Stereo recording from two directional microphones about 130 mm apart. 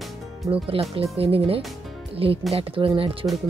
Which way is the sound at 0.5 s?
45° right (ahead or behind).